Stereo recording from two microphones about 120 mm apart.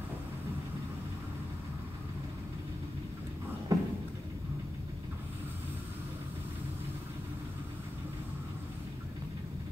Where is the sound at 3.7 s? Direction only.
30° right (ahead or behind).